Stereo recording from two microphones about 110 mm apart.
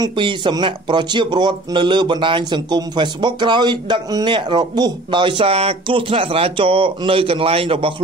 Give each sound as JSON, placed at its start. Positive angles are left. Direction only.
{"t": 0.0, "sound": "speech", "side_deg": -45}
{"t": 5.5, "sound": "speech", "side_deg": -65}